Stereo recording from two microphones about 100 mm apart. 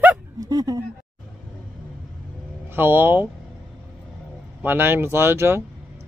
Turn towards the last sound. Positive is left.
turn(degrees=-25)  # may be behind; listen again after turning